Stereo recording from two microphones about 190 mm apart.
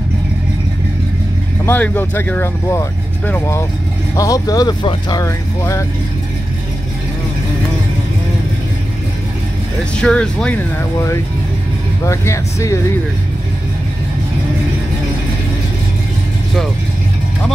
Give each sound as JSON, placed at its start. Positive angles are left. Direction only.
{"t": 1.7, "sound": "speech", "side_deg": 10}
{"t": 9.9, "sound": "speech", "side_deg": 5}